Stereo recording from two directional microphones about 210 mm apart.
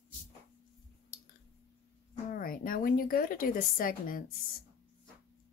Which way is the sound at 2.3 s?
40° left (ahead or behind).